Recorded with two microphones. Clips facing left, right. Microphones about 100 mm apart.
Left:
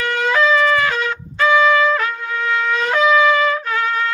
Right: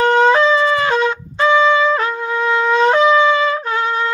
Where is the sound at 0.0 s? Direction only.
25° right (ahead or behind).